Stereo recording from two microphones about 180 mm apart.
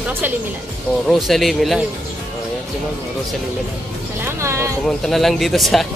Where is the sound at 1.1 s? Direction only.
Centre (ahead or behind).